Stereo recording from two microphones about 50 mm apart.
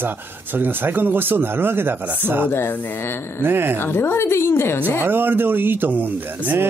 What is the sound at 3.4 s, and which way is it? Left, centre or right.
Speech, right.